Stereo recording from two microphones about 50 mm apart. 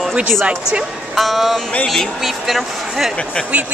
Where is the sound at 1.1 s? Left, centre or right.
Centre.